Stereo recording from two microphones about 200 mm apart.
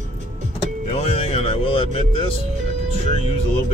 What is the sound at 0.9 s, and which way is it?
Music, 30° left (ahead or behind).